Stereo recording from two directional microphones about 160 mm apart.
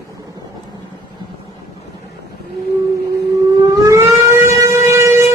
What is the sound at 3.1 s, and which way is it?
Civil defense siren, 25° right (ahead or behind).